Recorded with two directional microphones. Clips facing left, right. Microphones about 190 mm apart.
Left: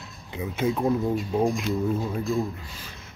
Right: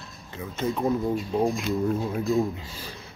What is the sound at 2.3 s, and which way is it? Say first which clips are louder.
Speech: right 6 dB; 20° right (ahead or behind).